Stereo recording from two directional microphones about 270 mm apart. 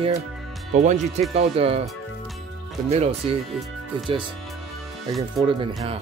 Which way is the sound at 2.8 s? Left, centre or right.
Right.